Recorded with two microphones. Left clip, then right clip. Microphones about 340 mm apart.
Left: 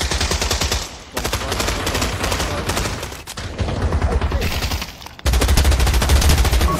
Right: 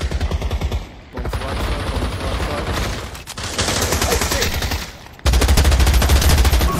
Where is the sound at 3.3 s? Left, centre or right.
Centre.